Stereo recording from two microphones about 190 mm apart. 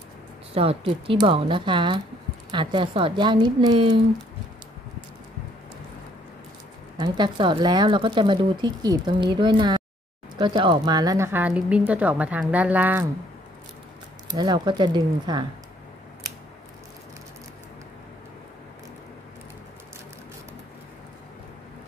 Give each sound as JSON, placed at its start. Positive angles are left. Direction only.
{"t": 0.6, "sound": "speech", "side_deg": -30}
{"t": 7.0, "sound": "speech", "side_deg": -25}
{"t": 14.3, "sound": "speech", "side_deg": -20}